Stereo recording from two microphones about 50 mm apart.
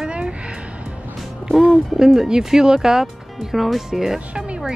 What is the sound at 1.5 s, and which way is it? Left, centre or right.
Speech, centre.